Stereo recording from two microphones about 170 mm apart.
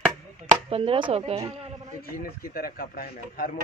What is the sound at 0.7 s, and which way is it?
Speech, 35° right (ahead or behind).